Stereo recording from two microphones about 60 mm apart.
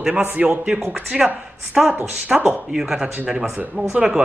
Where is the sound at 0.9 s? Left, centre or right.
Centre.